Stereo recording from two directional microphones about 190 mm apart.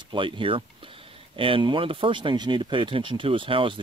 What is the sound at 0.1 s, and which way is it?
Speech, 25° right (ahead or behind).